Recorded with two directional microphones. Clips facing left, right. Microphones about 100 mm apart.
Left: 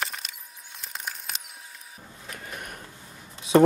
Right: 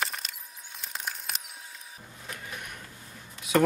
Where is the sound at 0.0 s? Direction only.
Centre (ahead or behind).